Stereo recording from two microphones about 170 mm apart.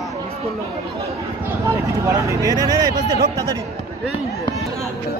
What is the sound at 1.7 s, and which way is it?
Speech, 15° right (ahead or behind).